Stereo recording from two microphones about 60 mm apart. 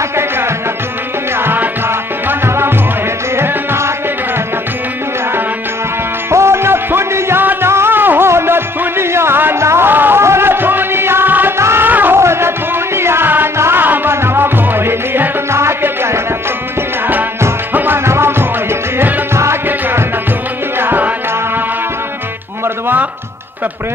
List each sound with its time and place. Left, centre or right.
1.4 s tabla: right
3.3 s music: right
6.3 s music: right
11.5 s music: right
11.9 s music: right
12.2 s music: right
17.7 s music: right
20.8 s music: right